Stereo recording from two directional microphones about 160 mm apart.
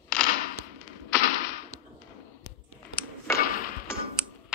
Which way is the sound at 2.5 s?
90° left.